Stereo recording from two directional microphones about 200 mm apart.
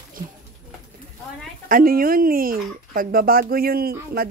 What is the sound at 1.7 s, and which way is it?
Speech, 45° right (ahead or behind).